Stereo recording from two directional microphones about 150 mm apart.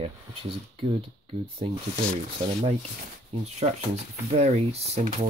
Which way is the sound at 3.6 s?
45° right (ahead or behind).